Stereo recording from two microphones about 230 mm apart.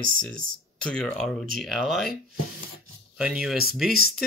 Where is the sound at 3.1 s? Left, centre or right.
Centre.